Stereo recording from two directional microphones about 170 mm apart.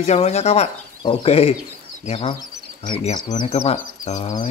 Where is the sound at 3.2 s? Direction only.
25° left (ahead or behind).